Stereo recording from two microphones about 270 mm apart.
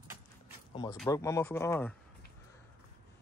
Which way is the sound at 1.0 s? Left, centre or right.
Centre.